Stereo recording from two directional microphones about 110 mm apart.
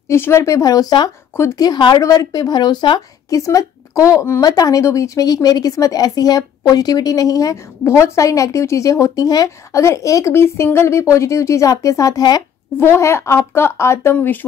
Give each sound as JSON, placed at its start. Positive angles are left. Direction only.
{"t": 0.1, "sound": "a woman's voice", "side_deg": 25}
{"t": 1.3, "sound": "speech", "side_deg": 25}
{"t": 1.6, "sound": "a woman's voice", "side_deg": 40}
{"t": 3.3, "sound": "a woman's voice", "side_deg": 30}
{"t": 12.7, "sound": "speech", "side_deg": 25}